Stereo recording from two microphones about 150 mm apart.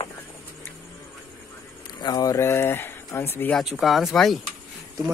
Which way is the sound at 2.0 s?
25° left (ahead or behind).